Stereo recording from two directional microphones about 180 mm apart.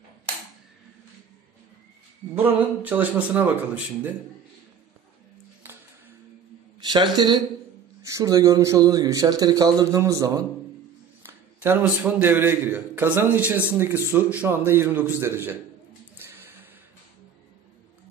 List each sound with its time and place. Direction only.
2.3 s a man's voice: 10° right (ahead or behind)
6.8 s a sound: 25° right (ahead or behind)
8.0 s a man's voice: 20° right (ahead or behind)